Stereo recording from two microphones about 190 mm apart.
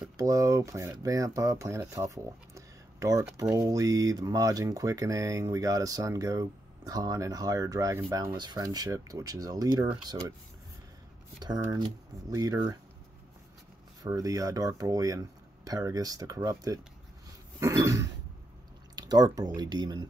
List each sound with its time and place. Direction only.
0.2 s speech: 20° right (ahead or behind)
11.4 s speech: 20° right (ahead or behind)
14.0 s speech: 20° right (ahead or behind)